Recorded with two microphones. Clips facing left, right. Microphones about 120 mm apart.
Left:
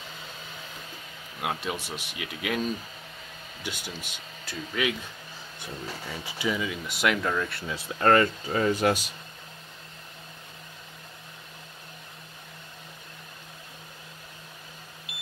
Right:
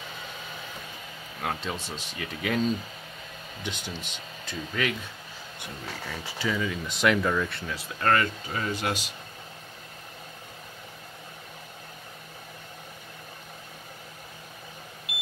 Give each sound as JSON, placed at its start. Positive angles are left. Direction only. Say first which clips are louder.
{"t": 1.4, "sound": "speech", "louder": "left 1 dB", "side_deg": 10}
{"t": 6.0, "sound": "speech", "louder": "left 1 dB", "side_deg": 15}
{"t": 7.7, "sound": "speech", "louder": "left 4 dB", "side_deg": 30}